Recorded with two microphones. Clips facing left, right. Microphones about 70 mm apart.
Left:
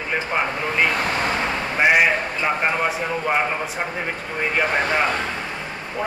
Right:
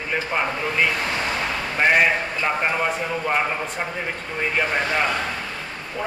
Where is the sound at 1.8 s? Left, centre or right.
Centre.